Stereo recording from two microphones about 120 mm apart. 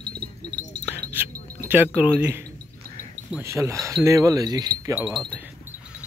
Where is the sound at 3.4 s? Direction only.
25° right (ahead or behind).